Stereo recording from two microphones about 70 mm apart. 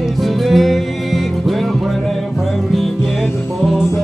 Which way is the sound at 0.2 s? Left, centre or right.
Centre.